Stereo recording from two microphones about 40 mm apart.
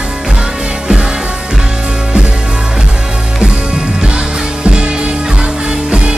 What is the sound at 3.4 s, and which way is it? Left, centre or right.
Music, right.